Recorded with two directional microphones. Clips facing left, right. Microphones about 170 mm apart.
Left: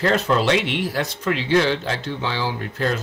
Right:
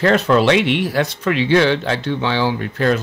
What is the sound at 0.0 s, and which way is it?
Speech, 70° right (ahead or behind).